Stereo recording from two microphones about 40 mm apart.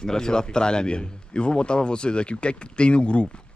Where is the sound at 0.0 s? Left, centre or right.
Centre.